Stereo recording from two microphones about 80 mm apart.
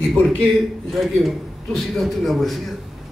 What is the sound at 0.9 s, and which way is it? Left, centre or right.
Speech, centre.